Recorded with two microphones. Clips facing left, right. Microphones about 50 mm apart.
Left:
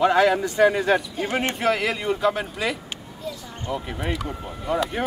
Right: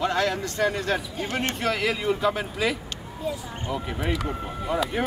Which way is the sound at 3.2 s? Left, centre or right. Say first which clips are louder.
Right 3 dB; right.